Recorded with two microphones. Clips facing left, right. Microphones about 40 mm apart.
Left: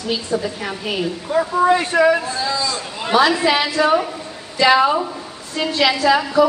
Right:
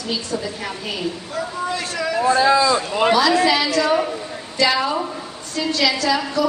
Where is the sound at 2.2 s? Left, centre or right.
Right.